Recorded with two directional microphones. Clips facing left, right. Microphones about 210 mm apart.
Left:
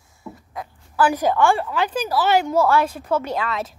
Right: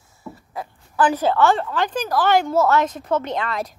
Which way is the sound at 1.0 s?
10° left (ahead or behind).